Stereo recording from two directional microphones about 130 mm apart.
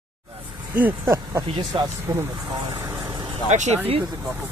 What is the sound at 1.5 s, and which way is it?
Speech, 30° right (ahead or behind).